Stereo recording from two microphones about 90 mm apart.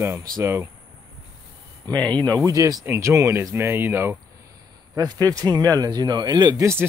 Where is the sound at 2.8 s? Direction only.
30° right (ahead or behind).